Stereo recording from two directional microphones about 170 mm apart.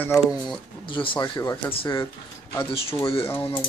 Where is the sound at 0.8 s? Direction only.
30° left (ahead or behind).